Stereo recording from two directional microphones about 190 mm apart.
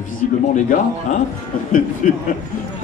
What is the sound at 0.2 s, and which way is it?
Speech, 40° left (ahead or behind).